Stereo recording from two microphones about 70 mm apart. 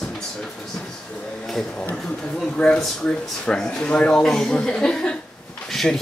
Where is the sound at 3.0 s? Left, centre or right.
Centre.